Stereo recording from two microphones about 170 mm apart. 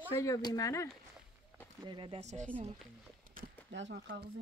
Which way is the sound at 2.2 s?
45° right (ahead or behind).